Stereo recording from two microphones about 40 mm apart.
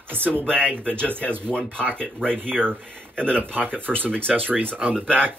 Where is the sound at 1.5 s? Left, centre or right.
Left.